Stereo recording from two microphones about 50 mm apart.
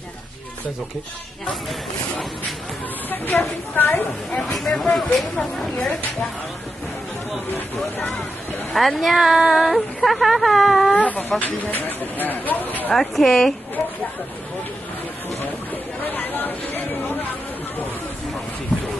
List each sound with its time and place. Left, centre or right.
3.1 s speech: left
4.3 s speech: centre
4.6 s speech: centre
8.7 s speech: centre
11.0 s speech: left
12.9 s speech: centre
16.1 s chatter: left